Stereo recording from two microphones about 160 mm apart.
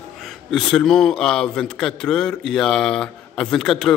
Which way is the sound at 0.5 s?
5° left (ahead or behind).